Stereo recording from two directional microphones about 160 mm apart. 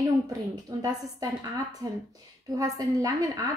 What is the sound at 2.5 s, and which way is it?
Speech, 20° right (ahead or behind).